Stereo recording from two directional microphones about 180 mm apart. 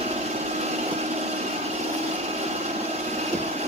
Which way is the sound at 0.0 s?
35° right (ahead or behind).